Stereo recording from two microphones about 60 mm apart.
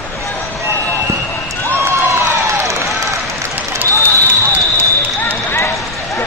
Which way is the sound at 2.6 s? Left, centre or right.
Right.